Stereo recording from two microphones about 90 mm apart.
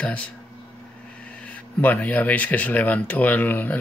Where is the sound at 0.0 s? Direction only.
15° left (ahead or behind).